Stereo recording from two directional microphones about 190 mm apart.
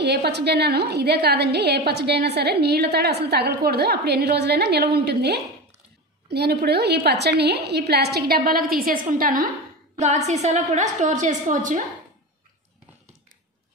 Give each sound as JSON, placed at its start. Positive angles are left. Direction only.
{"t": 0.0, "sound": "a woman's voice", "side_deg": -60}
{"t": 9.9, "sound": "a woman's voice", "side_deg": -35}